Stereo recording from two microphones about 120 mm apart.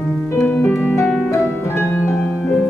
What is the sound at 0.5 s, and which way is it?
Music, 15° left (ahead or behind).